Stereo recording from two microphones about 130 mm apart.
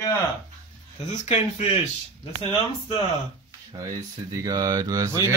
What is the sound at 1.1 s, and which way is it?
Speech, 60° left (ahead or behind).